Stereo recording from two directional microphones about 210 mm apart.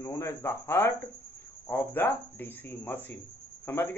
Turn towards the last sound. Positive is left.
turn(degrees=10)  # may be behind; listen again after turning